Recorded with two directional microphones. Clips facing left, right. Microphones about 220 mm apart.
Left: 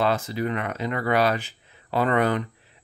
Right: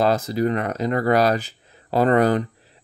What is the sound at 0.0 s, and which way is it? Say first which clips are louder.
Speech: right 5 dB; 40° right (ahead or behind).